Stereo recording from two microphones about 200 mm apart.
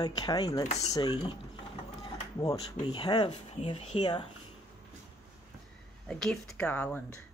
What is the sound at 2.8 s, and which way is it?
Speech, 25° left (ahead or behind).